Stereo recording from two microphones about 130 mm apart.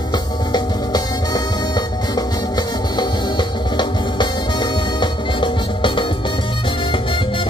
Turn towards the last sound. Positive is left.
turn(degrees=40)  # may be behind; listen again after turning